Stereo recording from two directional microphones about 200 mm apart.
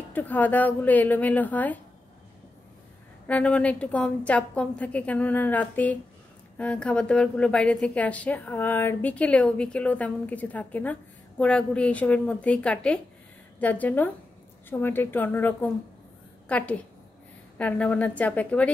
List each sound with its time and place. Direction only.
0.1 s a woman's voice: 10° left (ahead or behind)
3.3 s a woman's voice: 5° left (ahead or behind)